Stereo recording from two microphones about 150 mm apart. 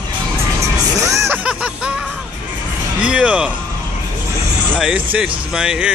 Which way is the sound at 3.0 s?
5° right (ahead or behind).